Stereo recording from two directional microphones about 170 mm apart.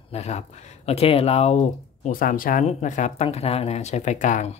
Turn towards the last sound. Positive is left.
turn(degrees=45)  # may be behind; listen again after turning